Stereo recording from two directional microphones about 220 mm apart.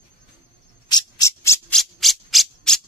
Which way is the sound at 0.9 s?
15° left (ahead or behind).